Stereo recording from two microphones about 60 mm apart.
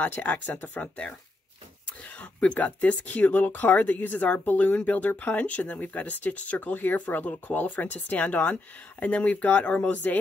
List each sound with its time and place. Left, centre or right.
0.0 s speech: left
2.0 s speech: left